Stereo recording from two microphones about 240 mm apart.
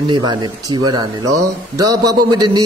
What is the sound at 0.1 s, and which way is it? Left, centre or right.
A man's voice, centre.